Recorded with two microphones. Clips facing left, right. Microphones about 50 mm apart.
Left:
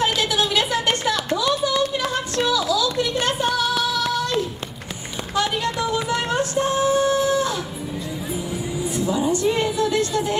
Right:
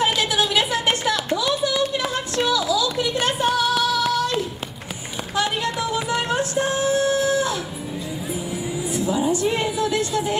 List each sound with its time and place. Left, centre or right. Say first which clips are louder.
0.0 s a sound: even; centre
5.3 s music: left 1 dB; centre
8.3 s vehicle: even; centre